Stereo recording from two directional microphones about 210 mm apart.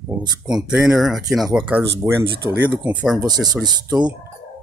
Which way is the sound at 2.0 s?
10° right (ahead or behind).